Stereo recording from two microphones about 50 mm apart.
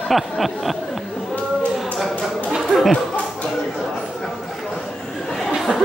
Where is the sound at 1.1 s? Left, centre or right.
Left.